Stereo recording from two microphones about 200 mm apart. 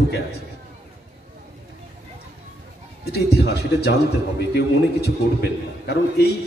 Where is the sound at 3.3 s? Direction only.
55° left (ahead or behind).